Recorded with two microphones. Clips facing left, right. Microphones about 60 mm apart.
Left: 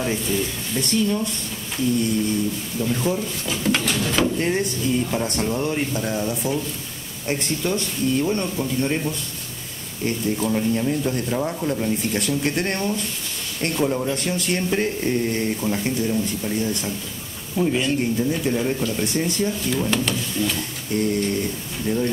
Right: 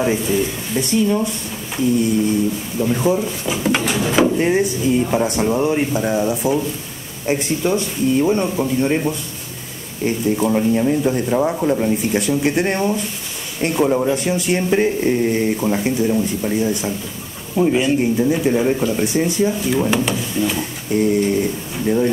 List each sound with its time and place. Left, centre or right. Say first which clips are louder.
0.0 s speech: right 6 dB; centre
13.8 s speech: right 7 dB; right
14.1 s speech: right 5 dB; centre